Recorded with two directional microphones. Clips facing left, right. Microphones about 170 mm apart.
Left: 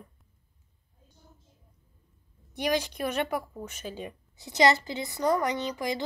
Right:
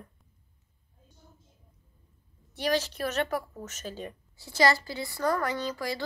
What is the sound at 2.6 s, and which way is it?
A woman's voice, 15° left (ahead or behind).